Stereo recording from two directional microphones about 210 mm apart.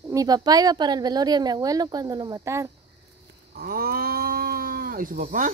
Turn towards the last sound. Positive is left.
turn(degrees=-40)  # may be behind; listen again after turning